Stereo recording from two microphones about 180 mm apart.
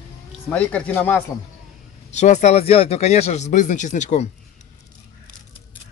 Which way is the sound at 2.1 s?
40° left (ahead or behind).